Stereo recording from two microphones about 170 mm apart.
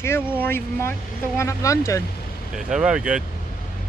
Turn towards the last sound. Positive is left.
turn(degrees=-5)  # may be behind; listen again after turning